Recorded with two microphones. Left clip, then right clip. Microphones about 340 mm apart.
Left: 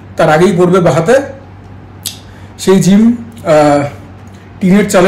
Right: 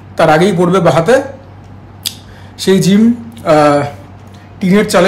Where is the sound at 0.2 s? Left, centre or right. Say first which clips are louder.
Left 1 dB; centre.